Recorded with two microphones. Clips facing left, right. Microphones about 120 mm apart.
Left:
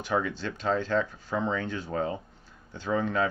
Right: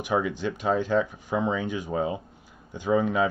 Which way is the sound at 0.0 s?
15° right (ahead or behind).